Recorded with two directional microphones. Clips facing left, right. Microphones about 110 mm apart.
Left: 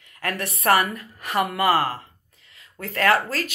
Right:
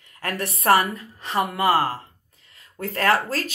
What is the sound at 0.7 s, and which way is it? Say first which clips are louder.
Speech: right 1 dB; 25° right (ahead or behind).